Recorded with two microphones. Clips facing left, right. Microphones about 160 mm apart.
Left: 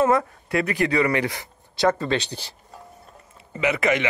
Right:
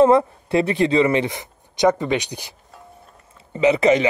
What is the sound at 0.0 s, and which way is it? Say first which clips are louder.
Speech: right 6 dB; 25° right (ahead or behind).